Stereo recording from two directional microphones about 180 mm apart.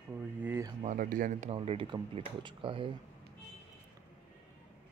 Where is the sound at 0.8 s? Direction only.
45° right (ahead or behind); by 2.9 s 30° right (ahead or behind).